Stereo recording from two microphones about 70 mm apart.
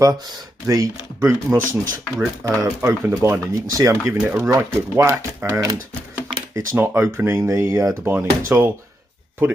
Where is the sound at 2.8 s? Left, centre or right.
Right.